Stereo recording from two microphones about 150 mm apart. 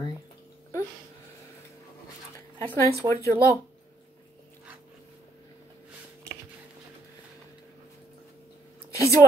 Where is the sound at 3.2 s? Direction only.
20° left (ahead or behind).